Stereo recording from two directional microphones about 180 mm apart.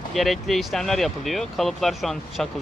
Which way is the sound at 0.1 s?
Centre (ahead or behind).